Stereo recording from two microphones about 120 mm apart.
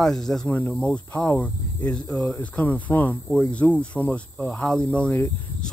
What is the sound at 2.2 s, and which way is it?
Speech, 25° left (ahead or behind).